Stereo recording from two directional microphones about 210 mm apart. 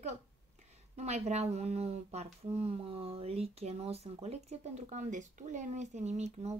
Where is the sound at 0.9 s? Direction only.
30° right (ahead or behind).